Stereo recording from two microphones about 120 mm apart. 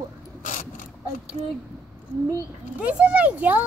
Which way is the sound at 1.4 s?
30° right (ahead or behind).